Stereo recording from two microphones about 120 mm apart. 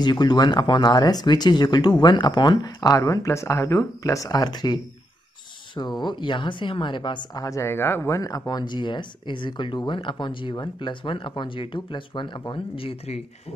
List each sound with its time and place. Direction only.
0.0 s speech: 35° left (ahead or behind)
5.8 s speech: 35° left (ahead or behind); by 13.2 s 55° left (ahead or behind)